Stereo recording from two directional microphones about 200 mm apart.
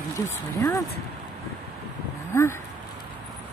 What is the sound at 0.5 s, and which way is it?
Speech, 15° left (ahead or behind).